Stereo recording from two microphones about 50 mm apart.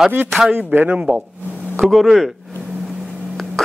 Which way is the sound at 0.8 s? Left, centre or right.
Centre.